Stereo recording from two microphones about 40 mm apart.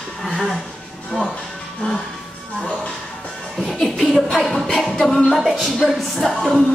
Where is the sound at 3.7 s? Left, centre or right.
Centre.